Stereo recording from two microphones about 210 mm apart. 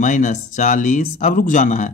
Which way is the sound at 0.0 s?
35° left (ahead or behind).